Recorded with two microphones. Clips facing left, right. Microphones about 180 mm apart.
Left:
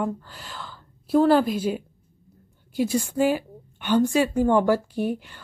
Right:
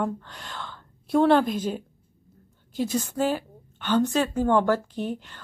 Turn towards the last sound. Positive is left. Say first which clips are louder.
# left 4 dB
turn(degrees=10)  # may be behind; listen again after turning